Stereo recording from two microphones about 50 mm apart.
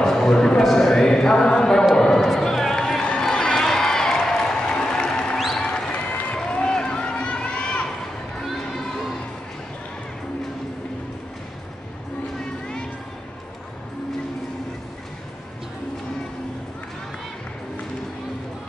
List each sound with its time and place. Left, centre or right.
0.0 s a sound: centre
2.2 s run: centre
3.2 s crowd: centre
5.6 s music: centre
6.3 s run: centre
8.5 s crowd: centre